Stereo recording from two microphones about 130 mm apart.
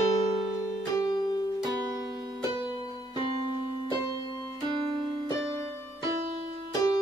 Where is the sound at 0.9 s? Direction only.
30° left (ahead or behind).